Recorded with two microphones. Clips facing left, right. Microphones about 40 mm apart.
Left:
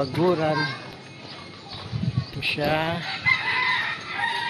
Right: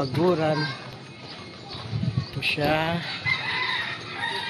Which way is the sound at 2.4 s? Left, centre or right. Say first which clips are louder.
Even; centre.